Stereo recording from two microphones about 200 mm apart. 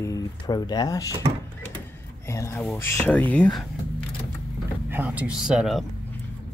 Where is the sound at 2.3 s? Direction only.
15° left (ahead or behind).